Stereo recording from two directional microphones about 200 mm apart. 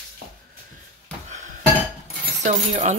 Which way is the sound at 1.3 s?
35° right (ahead or behind).